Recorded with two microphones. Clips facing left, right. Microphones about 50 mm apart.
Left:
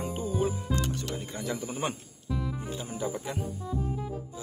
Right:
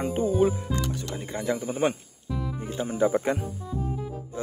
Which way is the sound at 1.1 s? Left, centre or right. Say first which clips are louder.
Right 5 dB; right.